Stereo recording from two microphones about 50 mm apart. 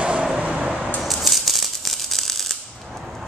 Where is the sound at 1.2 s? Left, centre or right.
Centre.